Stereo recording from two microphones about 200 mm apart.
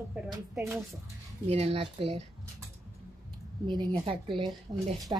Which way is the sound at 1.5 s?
30° right (ahead or behind).